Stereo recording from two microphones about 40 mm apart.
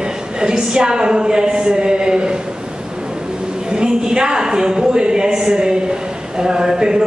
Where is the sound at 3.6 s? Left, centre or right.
Centre.